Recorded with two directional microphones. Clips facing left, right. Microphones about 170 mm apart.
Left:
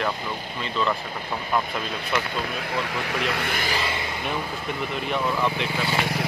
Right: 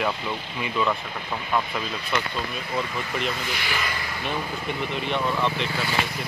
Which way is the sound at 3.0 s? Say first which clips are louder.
Left 2 dB; 75° left (ahead or behind).